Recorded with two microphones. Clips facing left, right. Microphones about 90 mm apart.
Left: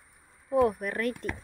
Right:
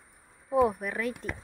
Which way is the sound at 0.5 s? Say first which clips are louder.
Even; 5° right (ahead or behind).